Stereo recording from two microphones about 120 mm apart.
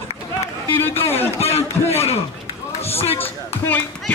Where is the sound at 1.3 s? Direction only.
60° left (ahead or behind).